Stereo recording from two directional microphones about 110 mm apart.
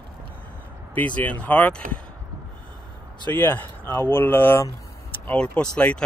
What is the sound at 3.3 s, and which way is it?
Speech, 15° left (ahead or behind).